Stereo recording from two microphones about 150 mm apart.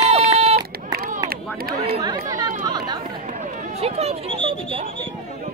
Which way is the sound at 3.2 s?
55° right (ahead or behind).